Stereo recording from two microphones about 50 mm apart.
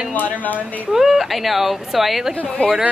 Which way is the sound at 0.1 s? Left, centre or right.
Left.